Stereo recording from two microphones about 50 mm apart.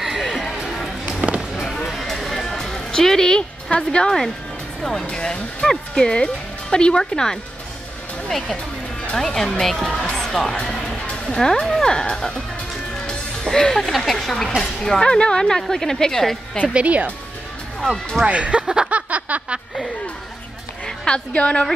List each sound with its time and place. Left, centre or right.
0.0 s music: centre
1.0 s music: right
1.9 s music: centre
3.7 s speech: centre
10.1 s music: centre
10.5 s speech: left
13.0 s music: centre
13.9 s speech: centre
16.7 s speech: right
18.2 s speech: right
18.9 s a sound: right
20.8 s a woman's voice: centre